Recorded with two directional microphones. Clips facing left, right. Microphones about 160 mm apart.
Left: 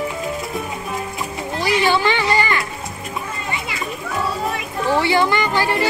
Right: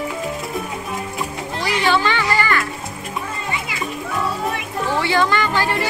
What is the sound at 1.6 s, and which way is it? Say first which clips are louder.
Music: left 1 dB; 15° left (ahead or behind).